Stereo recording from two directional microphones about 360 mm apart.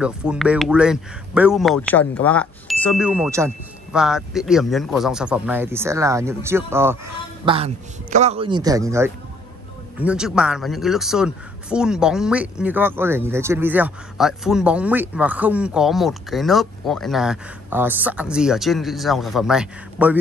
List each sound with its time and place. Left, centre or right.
0.0 s a man's voice: centre